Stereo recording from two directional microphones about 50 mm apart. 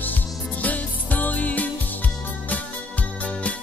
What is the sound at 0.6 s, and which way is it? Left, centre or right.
Music, left.